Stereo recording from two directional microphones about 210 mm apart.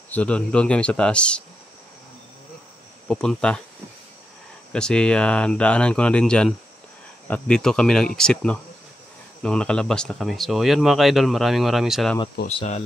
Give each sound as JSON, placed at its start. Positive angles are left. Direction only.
{"t": 0.1, "sound": "speech", "side_deg": 5}
{"t": 3.1, "sound": "speech", "side_deg": 5}
{"t": 4.7, "sound": "speech", "side_deg": 5}
{"t": 12.4, "sound": "speech", "side_deg": 30}